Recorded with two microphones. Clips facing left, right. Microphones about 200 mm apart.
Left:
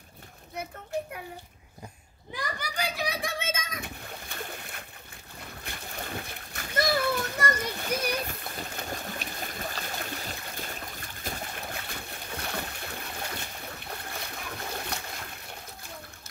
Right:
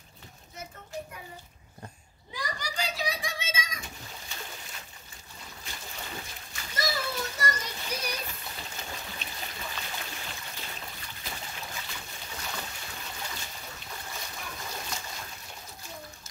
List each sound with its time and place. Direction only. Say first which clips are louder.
0.6 s children playing: left 7 dB; 60° left (ahead or behind)
2.3 s splash: left 1 dB; 55° left (ahead or behind)
14.8 s a sound: left 3 dB; 60° left (ahead or behind)